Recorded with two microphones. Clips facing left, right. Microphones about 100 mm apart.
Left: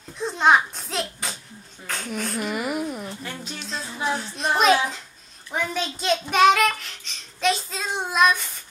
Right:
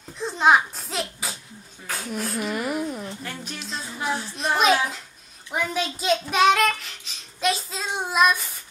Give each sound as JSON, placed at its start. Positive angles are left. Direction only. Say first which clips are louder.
{"t": 0.2, "sound": "a sound", "louder": "even", "side_deg": 0}
{"t": 3.5, "sound": "child singing", "louder": "left 1 dB", "side_deg": 0}
{"t": 5.5, "sound": "a child's voice", "louder": "right 1 dB", "side_deg": -5}